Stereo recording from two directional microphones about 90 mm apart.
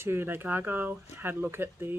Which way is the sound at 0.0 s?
25° right (ahead or behind).